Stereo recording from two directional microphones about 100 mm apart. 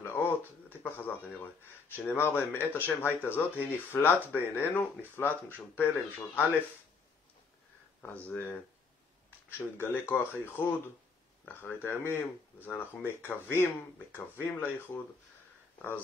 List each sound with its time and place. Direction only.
0.0 s a sound: 25° left (ahead or behind)
2.0 s speech: 20° left (ahead or behind)
8.0 s speech: 15° left (ahead or behind)
9.8 s speech: 20° left (ahead or behind)